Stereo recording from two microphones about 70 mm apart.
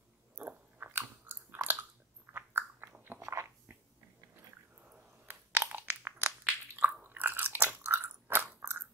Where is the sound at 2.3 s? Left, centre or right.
Right.